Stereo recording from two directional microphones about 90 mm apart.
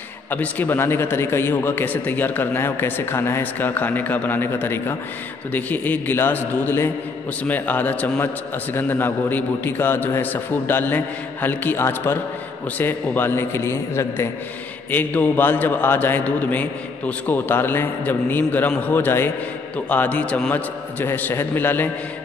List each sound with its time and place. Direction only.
0.3 s a man's voice: 20° left (ahead or behind)